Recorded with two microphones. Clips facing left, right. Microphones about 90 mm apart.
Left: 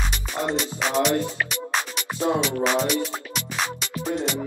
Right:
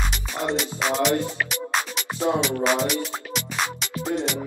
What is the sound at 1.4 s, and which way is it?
Music, centre (ahead or behind).